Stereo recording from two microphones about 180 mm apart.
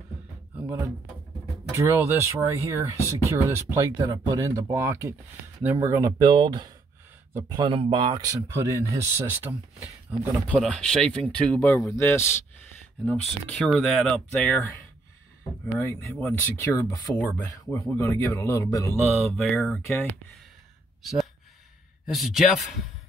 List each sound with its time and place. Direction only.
1.7 s speech: 15° right (ahead or behind)
10.5 s speech: 5° left (ahead or behind)
19.1 s speech: centre (ahead or behind)